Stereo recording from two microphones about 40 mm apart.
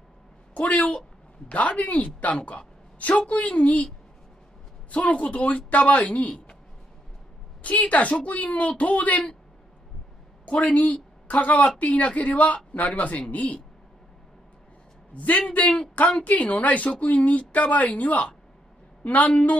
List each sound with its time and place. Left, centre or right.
0.6 s a woman's voice: left
4.9 s speech: left
7.6 s speech: left
10.4 s speech: left
15.1 s speech: left